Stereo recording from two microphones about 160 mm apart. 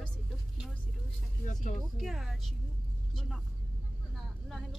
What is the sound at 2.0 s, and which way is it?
Speech, centre (ahead or behind).